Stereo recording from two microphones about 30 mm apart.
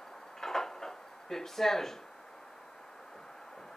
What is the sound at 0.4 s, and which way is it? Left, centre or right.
Drawer open or close, centre.